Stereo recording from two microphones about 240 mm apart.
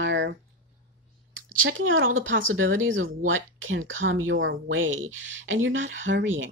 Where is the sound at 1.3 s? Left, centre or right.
Right.